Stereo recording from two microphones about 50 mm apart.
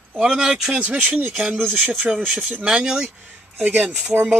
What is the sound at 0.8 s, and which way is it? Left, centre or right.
Speech, right.